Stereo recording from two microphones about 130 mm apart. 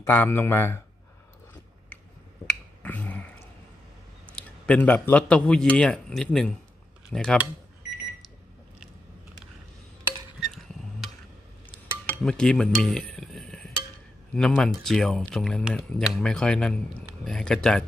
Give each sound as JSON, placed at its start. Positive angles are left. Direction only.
{"t": 0.0, "sound": "a man's voice", "side_deg": 15}
{"t": 2.4, "sound": "finger snapping", "side_deg": 10}
{"t": 4.4, "sound": "a man's voice", "side_deg": 10}
{"t": 10.4, "sound": "a sound", "side_deg": 0}
{"t": 12.2, "sound": "cutlery", "side_deg": 5}
{"t": 14.3, "sound": "speech", "side_deg": 5}